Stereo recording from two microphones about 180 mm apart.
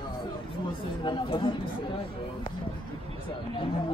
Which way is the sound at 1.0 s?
25° left (ahead or behind).